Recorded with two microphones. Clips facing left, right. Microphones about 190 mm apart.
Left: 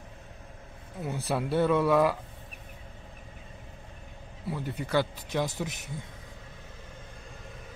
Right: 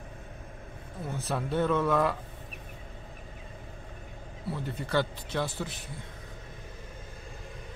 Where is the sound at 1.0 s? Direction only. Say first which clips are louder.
Left 3 dB; 10° left (ahead or behind).